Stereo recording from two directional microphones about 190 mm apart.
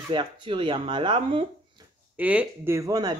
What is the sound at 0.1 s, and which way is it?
Speech, 25° right (ahead or behind).